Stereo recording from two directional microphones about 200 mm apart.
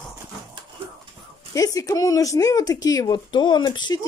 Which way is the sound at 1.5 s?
15° left (ahead or behind).